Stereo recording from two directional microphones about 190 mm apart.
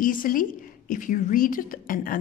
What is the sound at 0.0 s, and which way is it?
A woman's voice, 45° left (ahead or behind).